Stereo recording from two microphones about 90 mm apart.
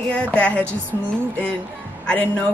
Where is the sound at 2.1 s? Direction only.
15° left (ahead or behind).